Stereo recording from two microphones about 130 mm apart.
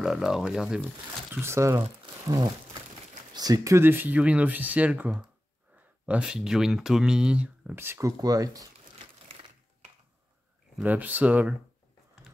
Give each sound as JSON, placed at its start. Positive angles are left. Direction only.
{"t": 0.0, "sound": "speech", "side_deg": -5}
{"t": 8.2, "sound": "speech", "side_deg": -30}
{"t": 8.9, "sound": "crushing", "side_deg": -50}
{"t": 10.8, "sound": "speech", "side_deg": -15}